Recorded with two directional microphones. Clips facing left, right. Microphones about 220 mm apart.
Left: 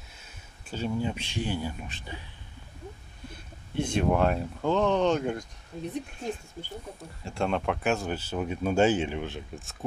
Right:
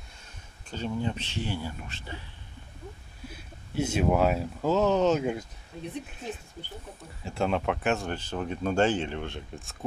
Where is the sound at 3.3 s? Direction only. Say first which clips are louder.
Even; 5° right (ahead or behind).